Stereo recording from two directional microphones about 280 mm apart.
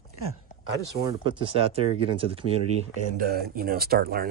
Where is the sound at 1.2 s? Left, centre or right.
Centre.